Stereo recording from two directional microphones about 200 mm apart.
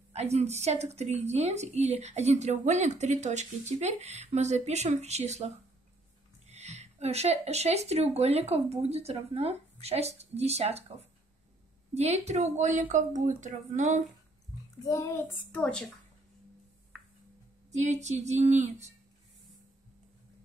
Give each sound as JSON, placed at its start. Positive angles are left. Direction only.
{"t": 0.1, "sound": "a woman's voice", "side_deg": -35}
{"t": 14.9, "sound": "a woman's voice", "side_deg": 15}
{"t": 17.6, "sound": "a woman's voice", "side_deg": -35}